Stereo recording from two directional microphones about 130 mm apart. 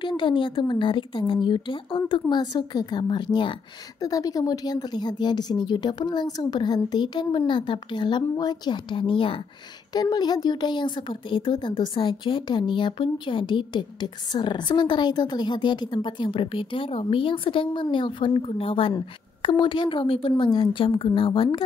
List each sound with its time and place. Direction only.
0.0 s speech: 40° left (ahead or behind)
9.9 s a woman's voice: 30° left (ahead or behind)